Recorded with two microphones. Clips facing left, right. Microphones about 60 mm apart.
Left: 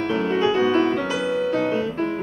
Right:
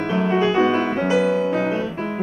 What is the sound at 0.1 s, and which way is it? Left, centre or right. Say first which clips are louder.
Music: right 2 dB; centre.